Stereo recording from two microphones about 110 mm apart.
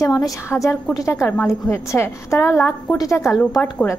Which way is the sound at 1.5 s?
25° left (ahead or behind).